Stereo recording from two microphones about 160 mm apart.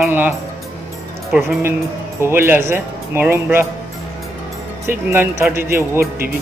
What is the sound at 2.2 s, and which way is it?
Speech, 15° right (ahead or behind).